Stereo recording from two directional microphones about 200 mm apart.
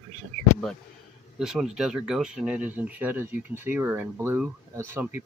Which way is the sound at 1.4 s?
5° right (ahead or behind).